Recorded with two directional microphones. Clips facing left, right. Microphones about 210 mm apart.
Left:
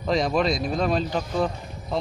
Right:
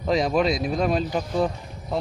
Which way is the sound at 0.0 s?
5° right (ahead or behind).